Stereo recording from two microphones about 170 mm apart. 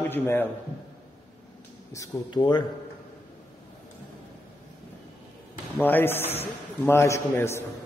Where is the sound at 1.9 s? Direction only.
25° left (ahead or behind).